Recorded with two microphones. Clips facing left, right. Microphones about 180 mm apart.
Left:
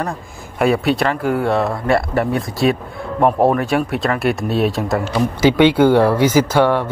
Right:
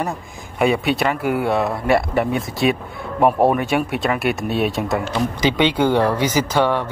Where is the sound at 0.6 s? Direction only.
Centre (ahead or behind).